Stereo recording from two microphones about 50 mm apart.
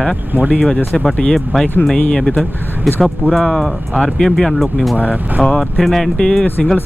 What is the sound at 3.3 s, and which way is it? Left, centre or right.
Speech, centre.